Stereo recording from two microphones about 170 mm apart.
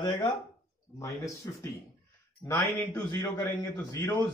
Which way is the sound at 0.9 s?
20° left (ahead or behind).